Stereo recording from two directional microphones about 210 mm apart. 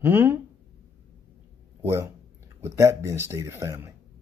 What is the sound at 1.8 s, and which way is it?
Speech, 10° right (ahead or behind).